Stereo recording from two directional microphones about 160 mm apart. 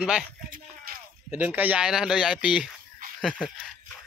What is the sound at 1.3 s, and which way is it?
Speech, 10° right (ahead or behind).